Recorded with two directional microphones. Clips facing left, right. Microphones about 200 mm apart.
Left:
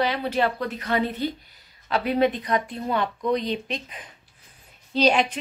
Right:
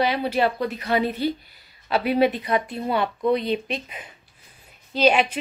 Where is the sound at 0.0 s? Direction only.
10° right (ahead or behind).